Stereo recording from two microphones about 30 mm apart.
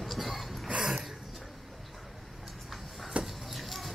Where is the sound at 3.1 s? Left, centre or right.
Right.